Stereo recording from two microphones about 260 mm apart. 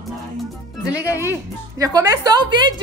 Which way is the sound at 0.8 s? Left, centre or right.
Centre.